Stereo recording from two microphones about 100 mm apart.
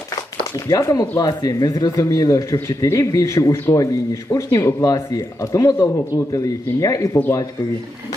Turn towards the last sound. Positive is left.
turn(degrees=35)  # may be behind; listen again after turning